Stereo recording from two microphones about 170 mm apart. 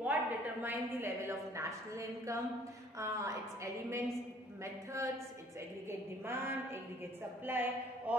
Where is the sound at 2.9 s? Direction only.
20° right (ahead or behind).